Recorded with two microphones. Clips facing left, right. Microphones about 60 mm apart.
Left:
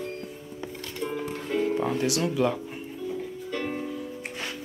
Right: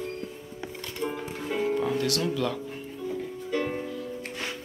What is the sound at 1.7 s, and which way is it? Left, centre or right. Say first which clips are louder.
Music: left 1 dB; centre.